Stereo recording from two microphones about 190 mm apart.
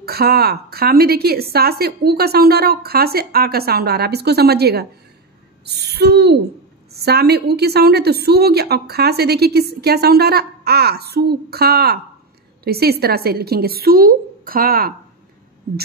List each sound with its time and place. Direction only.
0.0 s a woman's voice: 55° right (ahead or behind)